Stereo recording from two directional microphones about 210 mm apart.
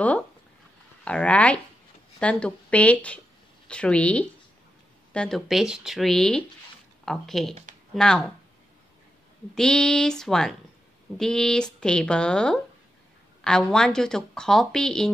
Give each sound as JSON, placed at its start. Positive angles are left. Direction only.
{"t": 1.0, "sound": "speech", "side_deg": 5}
{"t": 9.6, "sound": "speech", "side_deg": 5}